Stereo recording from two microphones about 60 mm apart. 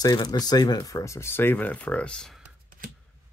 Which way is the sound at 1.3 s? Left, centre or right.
Left.